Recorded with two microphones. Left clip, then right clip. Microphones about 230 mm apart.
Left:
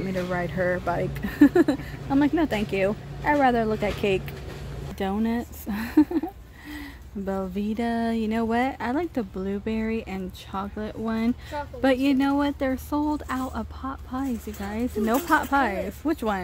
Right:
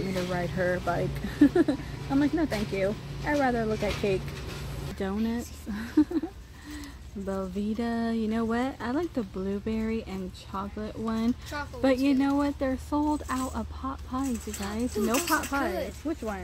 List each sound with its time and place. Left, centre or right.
0.3 s speech: centre
7.2 s speech: centre
15.2 s speech: centre
16.0 s speech: left